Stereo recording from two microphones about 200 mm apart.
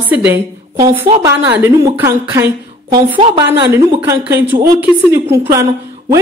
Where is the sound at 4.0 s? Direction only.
10° right (ahead or behind).